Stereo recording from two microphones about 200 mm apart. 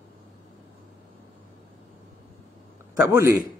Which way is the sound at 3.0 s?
15° right (ahead or behind).